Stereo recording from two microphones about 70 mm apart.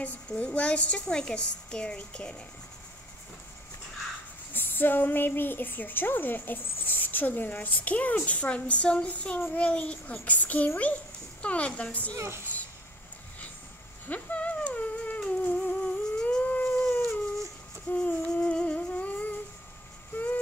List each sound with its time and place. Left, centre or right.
0.0 s a woman's voice: centre
4.6 s a woman's voice: left
12.5 s a sound: centre
14.0 s humming: left
17.8 s humming: left